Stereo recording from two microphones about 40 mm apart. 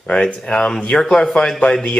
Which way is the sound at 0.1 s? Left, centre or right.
Left.